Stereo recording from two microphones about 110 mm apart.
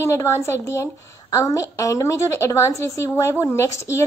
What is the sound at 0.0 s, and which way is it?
A woman's voice, 25° left (ahead or behind).